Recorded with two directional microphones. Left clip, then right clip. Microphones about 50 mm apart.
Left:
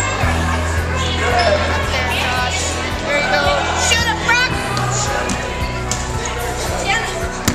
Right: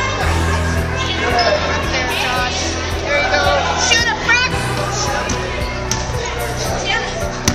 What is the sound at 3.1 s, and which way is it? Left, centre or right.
Music, right.